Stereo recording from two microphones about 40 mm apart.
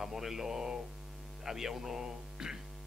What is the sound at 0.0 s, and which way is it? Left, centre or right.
Speech, centre.